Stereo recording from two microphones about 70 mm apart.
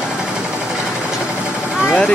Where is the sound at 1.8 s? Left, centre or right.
Centre.